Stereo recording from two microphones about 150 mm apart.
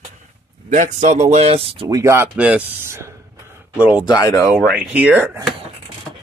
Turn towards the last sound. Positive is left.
turn(degrees=-10)  # may be behind; listen again after turning